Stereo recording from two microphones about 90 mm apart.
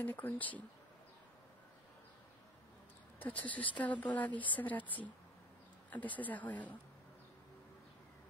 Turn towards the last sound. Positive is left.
turn(degrees=15)  # may be behind; listen again after turning